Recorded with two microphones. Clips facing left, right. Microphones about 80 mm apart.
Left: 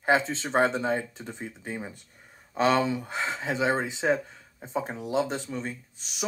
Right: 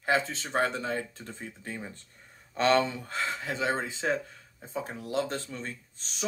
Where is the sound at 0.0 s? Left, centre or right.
Left.